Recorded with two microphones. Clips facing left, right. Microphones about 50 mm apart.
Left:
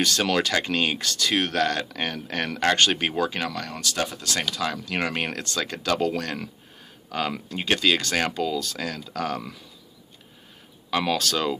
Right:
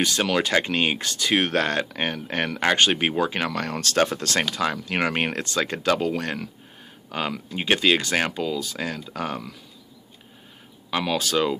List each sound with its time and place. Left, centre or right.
0.0 s speech: centre
3.5 s speech: right
4.5 s speech: right
7.1 s speech: centre
8.3 s speech: centre
10.9 s speech: centre